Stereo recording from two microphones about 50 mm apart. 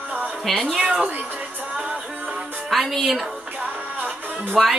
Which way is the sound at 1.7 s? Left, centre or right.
Centre.